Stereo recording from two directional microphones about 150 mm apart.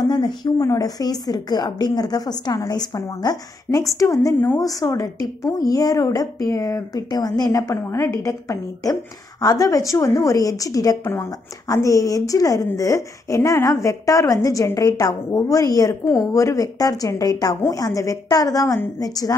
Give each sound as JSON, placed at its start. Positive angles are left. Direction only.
{"t": 0.0, "sound": "a woman's voice", "side_deg": 25}